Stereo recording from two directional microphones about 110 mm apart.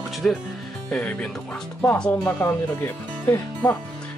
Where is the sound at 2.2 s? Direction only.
25° left (ahead or behind).